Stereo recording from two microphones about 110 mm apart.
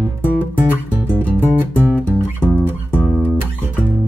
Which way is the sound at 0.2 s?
15° right (ahead or behind).